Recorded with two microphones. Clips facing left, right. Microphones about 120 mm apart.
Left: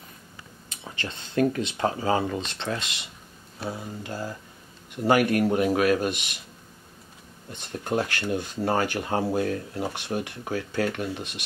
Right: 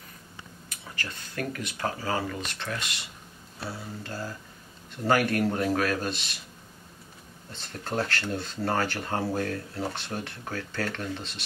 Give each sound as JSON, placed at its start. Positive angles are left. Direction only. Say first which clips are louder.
{"t": 0.7, "sound": "speech", "louder": "left 3 dB", "side_deg": 25}
{"t": 7.5, "sound": "speech", "louder": "left 4 dB", "side_deg": 15}